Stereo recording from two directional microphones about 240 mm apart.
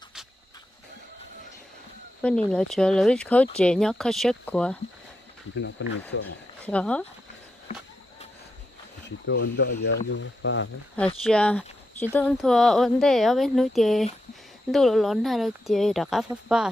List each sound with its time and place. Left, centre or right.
2.2 s speech: centre
5.5 s speech: left
6.6 s speech: centre
9.2 s speech: left
11.2 s speech: centre